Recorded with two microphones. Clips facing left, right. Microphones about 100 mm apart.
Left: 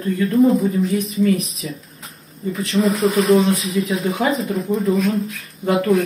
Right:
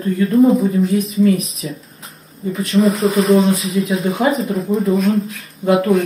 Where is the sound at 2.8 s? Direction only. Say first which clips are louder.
Right 3 dB; centre (ahead or behind).